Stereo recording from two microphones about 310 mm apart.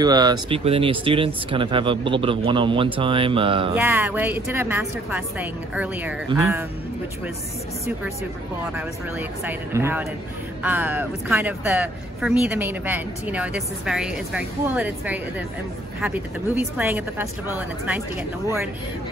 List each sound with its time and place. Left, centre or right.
0.0 s speech: centre
3.7 s speech: centre
9.4 s speech: centre